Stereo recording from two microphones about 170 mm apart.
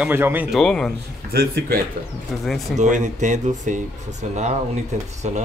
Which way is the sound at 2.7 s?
45° right (ahead or behind).